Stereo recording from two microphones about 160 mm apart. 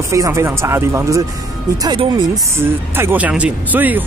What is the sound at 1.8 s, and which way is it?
Speech, 25° right (ahead or behind).